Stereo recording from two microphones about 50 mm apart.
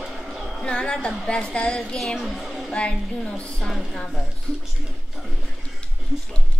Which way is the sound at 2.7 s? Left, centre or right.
Left.